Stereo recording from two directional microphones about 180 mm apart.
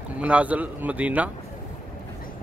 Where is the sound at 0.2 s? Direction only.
10° right (ahead or behind).